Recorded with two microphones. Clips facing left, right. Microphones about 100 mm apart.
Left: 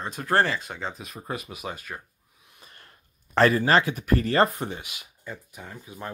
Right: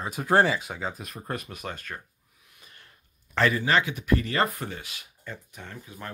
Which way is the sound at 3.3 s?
40° left (ahead or behind).